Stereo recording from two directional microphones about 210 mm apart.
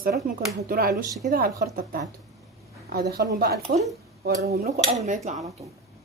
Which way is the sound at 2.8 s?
45° right (ahead or behind).